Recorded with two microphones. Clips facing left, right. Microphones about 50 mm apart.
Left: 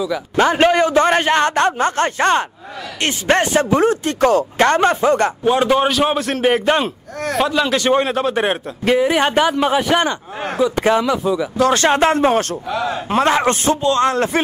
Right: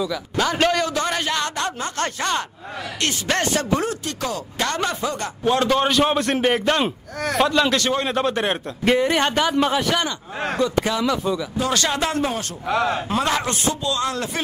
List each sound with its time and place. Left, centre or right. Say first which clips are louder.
0.4 s a man's voice: left 6 dB; left
1.0 s speech: left 9 dB; left
5.4 s a man's voice: left 4 dB; centre
5.9 s a man's voice: left 1 dB; centre
6.8 s speech: left 1 dB; centre
7.8 s a man's voice: left 7 dB; centre
8.1 s a man's voice: left 3 dB; centre
10.8 s speech: left 6 dB; left
11.1 s a man's voice: left 4 dB; centre
11.7 s speech: left 7 dB; left
13.1 s speech: left 7 dB; left